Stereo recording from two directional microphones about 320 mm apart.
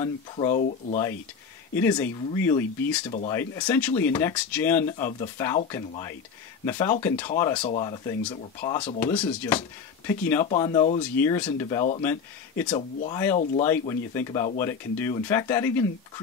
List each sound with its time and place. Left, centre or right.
0.0 s speech: centre
1.8 s speech: centre
8.8 s speech: centre
11.0 s speech: centre